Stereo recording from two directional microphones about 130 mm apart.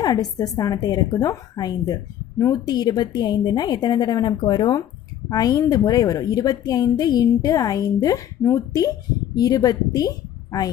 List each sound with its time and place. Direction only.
0.0 s a woman's voice: 30° left (ahead or behind)